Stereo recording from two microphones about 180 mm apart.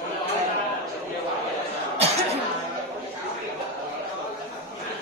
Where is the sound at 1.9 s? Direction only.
35° right (ahead or behind).